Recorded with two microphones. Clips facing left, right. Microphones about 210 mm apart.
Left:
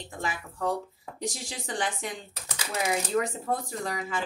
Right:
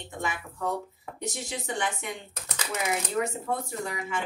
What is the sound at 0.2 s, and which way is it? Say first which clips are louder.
Speech: left 1 dB; 35° left (ahead or behind).